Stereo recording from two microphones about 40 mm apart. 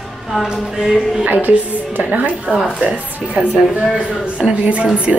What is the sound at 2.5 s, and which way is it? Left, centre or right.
Speech, centre.